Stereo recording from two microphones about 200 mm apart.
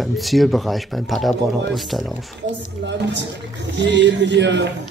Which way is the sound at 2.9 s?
60° right (ahead or behind).